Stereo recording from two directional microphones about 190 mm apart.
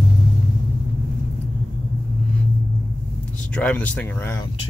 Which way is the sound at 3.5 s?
5° left (ahead or behind).